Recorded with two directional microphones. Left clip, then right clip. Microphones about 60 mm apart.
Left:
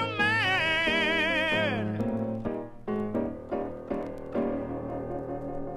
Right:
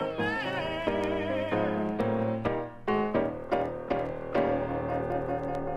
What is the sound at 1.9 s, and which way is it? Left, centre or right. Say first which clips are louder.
Music: right 3 dB; centre.